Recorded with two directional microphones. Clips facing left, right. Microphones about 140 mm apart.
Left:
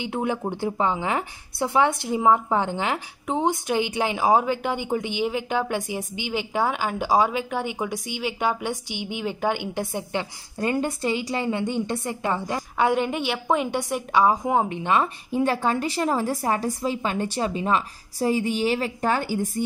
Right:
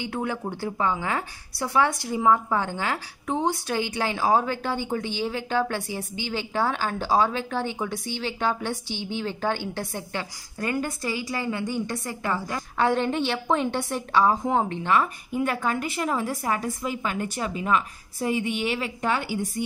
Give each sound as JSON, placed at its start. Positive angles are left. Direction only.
{"t": 0.0, "sound": "a woman's voice", "side_deg": 20}